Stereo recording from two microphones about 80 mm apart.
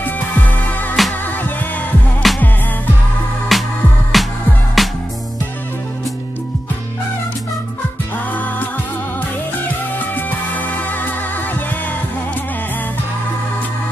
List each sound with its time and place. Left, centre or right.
0.0 s music: left
2.2 s music: centre
3.5 s music: centre
8.3 s music: left
9.9 s music: left